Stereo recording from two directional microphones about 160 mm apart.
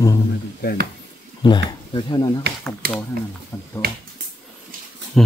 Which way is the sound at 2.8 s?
70° right (ahead or behind).